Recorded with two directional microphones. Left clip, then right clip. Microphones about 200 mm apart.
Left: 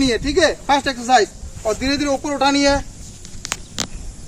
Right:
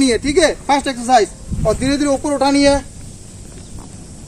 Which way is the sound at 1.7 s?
10° right (ahead or behind).